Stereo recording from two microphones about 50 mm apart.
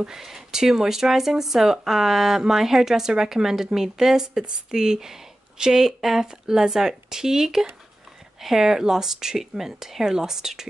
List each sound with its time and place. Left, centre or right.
0.0 s speech: centre